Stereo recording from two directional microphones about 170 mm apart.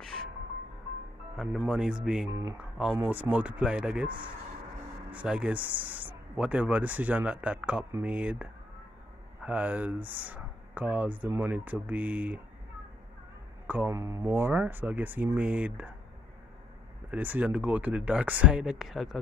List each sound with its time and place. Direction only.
1.3 s speech: centre (ahead or behind)
2.3 s speech: 15° right (ahead or behind)
2.8 s speech: 5° right (ahead or behind)
5.1 s speech: 5° right (ahead or behind)
13.7 s speech: 15° right (ahead or behind)
17.1 s speech: 10° right (ahead or behind)